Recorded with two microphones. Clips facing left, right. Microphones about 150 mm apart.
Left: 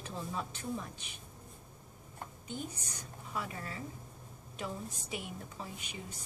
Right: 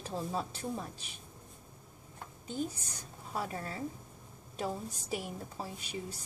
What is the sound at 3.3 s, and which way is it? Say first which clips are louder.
A woman's voice: right 3 dB; 40° right (ahead or behind).